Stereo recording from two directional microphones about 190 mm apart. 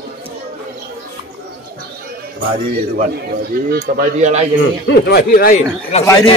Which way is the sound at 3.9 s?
40° right (ahead or behind).